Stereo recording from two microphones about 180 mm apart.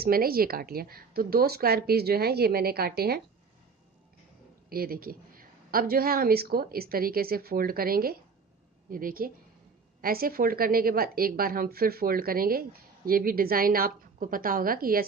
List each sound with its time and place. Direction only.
0.0 s a woman's voice: 55° right (ahead or behind)
4.6 s a woman's voice: 55° right (ahead or behind)